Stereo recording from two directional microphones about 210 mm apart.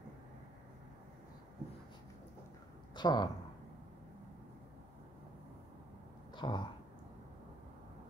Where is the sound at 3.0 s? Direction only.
20° left (ahead or behind).